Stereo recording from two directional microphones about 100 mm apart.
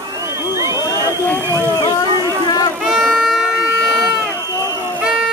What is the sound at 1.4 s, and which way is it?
Speech, 25° right (ahead or behind).